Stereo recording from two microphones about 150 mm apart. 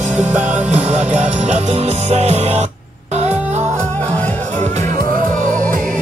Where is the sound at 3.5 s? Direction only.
50° right (ahead or behind).